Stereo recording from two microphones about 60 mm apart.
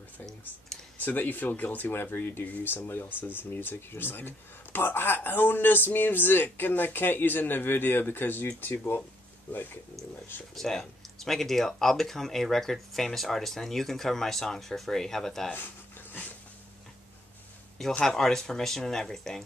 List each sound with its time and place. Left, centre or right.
0.9 s speech: left
10.5 s speech: centre
15.5 s dog: left
18.0 s speech: centre